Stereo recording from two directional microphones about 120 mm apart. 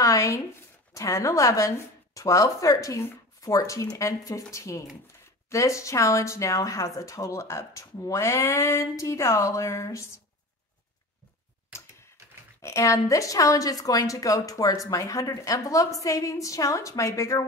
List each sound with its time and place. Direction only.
0.0 s a sound: 30° left (ahead or behind)
0.9 s a woman's voice: 25° left (ahead or behind)
12.6 s a woman's voice: 25° left (ahead or behind)